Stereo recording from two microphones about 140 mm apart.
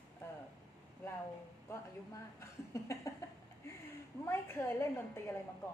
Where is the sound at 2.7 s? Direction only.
25° left (ahead or behind).